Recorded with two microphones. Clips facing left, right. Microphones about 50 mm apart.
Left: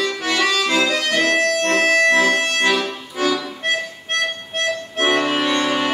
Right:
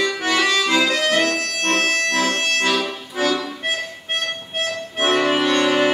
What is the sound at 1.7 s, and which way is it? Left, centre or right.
Music, centre.